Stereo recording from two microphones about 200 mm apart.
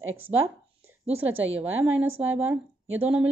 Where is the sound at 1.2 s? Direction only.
75° right (ahead or behind).